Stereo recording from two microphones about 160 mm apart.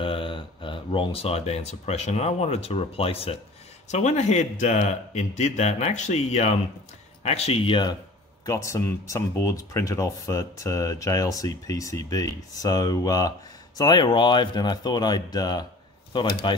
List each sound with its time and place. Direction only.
0.0 s speech: 35° left (ahead or behind)
8.5 s speech: 20° left (ahead or behind)